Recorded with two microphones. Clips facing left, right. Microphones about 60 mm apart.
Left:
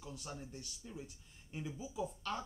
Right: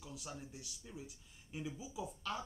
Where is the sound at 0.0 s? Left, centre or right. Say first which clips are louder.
Left 1 dB; centre.